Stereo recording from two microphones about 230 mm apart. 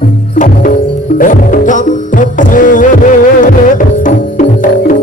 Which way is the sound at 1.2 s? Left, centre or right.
Left.